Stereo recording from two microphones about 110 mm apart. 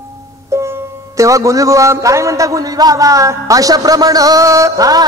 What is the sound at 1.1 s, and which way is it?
A man's voice, 30° right (ahead or behind).